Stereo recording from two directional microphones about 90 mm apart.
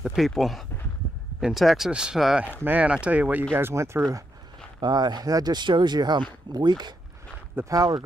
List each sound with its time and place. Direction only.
0.0 s speech: centre (ahead or behind)
2.6 s speech: 15° right (ahead or behind)
3.5 s speech: 30° right (ahead or behind)
4.7 s speech: 55° right (ahead or behind)
7.6 s speech: 25° right (ahead or behind)